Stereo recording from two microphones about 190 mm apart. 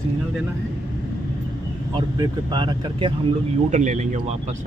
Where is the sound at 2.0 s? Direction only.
20° right (ahead or behind).